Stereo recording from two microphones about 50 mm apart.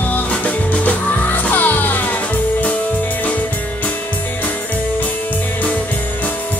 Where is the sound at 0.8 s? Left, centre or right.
Left.